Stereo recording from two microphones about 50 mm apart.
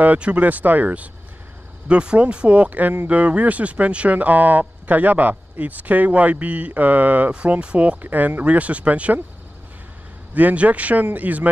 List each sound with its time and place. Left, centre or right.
0.0 s speech: right
7.6 s speech: right
8.0 s speech: right
8.5 s speech: right
10.3 s speech: right